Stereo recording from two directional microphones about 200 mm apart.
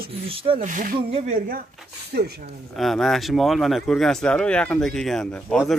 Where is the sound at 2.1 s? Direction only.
55° right (ahead or behind).